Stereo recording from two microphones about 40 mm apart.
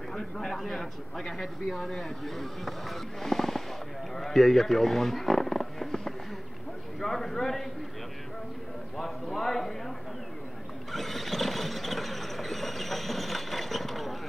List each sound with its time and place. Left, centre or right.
0.1 s speech: centre
8.9 s speech: centre
10.9 s train: centre